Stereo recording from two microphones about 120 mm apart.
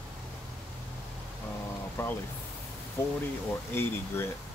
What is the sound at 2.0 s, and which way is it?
Speech, 20° left (ahead or behind).